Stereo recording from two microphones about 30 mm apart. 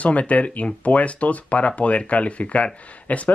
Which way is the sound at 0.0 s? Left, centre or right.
Left.